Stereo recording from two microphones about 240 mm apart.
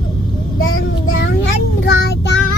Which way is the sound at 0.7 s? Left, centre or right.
Left.